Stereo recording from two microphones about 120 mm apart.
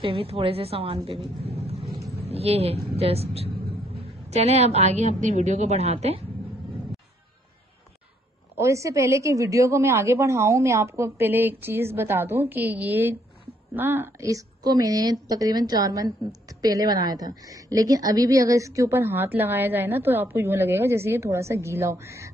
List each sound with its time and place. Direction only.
0.0 s a woman's voice: 50° right (ahead or behind)
8.5 s a woman's voice: 25° right (ahead or behind)